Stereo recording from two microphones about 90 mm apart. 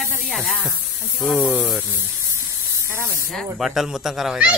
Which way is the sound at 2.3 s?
35° right (ahead or behind).